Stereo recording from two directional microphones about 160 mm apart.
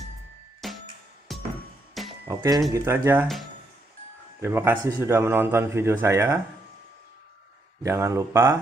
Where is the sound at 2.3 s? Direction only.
25° right (ahead or behind).